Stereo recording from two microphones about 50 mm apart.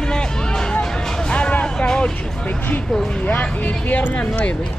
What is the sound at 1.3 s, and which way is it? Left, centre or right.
Vehicle, left.